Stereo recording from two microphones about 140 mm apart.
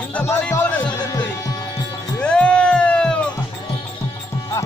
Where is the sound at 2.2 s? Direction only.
10° left (ahead or behind).